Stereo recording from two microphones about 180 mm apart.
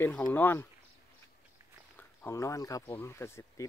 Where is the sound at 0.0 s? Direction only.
10° left (ahead or behind).